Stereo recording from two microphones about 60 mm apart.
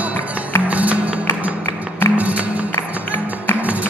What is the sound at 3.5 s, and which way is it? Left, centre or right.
Music, right.